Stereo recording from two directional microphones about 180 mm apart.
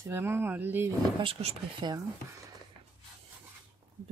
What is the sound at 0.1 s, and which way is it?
Speech, 10° right (ahead or behind).